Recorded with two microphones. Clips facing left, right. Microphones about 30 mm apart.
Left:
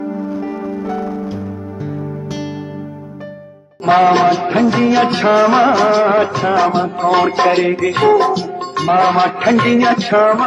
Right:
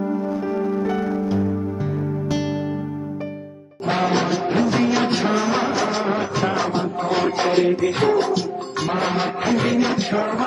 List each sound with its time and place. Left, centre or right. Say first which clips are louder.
0.2 s music: left 1 dB; centre
3.8 s music: left 10 dB; left
4.6 s music of bollywood: left 6 dB; left
6.0 s music: left 10 dB; left
6.3 s music: left 7 dB; left
6.6 s music: left 8 dB; left